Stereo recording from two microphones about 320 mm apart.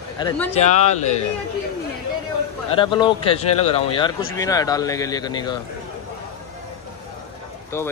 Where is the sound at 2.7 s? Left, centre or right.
Centre.